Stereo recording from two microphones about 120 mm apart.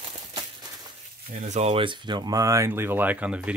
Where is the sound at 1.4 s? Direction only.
70° right (ahead or behind).